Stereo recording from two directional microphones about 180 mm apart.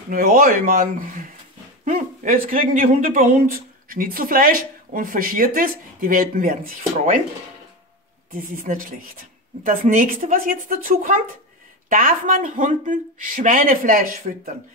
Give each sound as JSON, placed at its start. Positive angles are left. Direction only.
{"t": 0.1, "sound": "speech", "side_deg": -50}
{"t": 8.7, "sound": "speech", "side_deg": -45}